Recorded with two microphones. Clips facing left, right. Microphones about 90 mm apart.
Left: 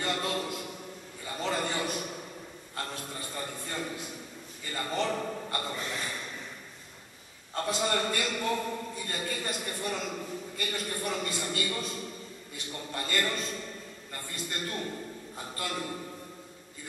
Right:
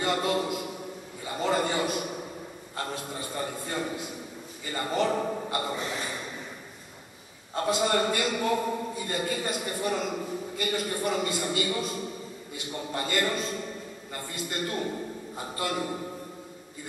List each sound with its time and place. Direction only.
0.0 s a man's voice: 10° right (ahead or behind)
1.2 s a sound: 10° right (ahead or behind)
2.8 s a man's voice: 10° right (ahead or behind)
7.6 s a man's voice: 10° right (ahead or behind)